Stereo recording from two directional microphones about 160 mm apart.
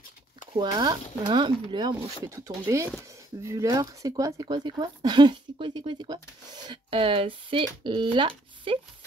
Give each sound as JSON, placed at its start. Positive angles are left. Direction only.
{"t": 0.5, "sound": "speech", "side_deg": -30}